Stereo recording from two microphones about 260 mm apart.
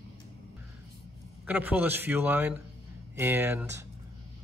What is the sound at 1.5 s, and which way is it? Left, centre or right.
Speech, centre.